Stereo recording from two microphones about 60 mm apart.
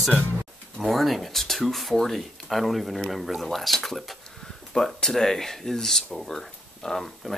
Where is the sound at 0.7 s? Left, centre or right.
Centre.